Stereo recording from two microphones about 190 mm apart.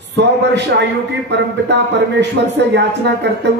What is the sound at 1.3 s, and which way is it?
Speech, 65° right (ahead or behind).